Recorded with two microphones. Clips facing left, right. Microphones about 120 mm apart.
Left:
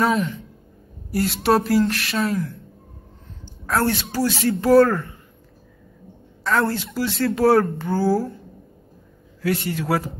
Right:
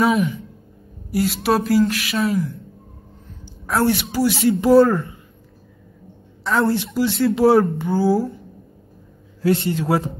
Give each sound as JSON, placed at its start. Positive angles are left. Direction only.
{"t": 0.0, "sound": "speech", "side_deg": -5}
{"t": 3.6, "sound": "speech", "side_deg": -15}
{"t": 6.4, "sound": "a woman's voice", "side_deg": -20}
{"t": 9.4, "sound": "a woman's voice", "side_deg": -25}